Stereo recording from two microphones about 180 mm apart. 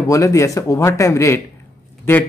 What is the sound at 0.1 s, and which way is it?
A man's voice, 15° left (ahead or behind).